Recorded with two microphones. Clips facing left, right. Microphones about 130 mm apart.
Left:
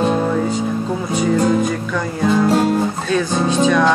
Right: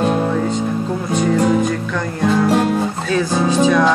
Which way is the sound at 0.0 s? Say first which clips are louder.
Even; centre (ahead or behind).